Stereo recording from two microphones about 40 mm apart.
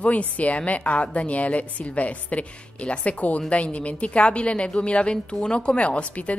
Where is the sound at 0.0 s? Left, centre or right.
Left.